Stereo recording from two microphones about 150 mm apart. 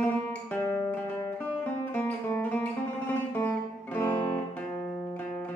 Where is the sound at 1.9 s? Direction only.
10° left (ahead or behind).